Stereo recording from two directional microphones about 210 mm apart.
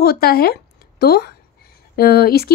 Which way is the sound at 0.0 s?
50° left (ahead or behind).